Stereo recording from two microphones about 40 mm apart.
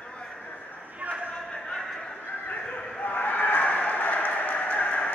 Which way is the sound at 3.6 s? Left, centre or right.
Left.